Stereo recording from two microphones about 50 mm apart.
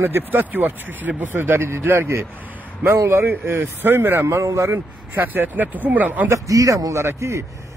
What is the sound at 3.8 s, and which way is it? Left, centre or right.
Speech, right.